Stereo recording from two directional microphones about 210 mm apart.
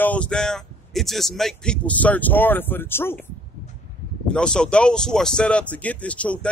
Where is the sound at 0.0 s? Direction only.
5° left (ahead or behind).